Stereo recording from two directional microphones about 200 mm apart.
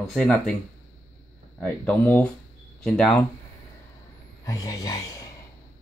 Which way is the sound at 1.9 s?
10° left (ahead or behind).